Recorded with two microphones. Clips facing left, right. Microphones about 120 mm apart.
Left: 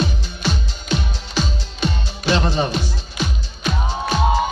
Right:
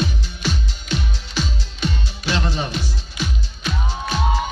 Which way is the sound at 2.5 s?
35° left (ahead or behind).